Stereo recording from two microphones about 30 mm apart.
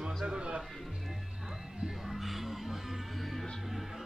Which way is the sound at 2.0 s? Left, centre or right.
Centre.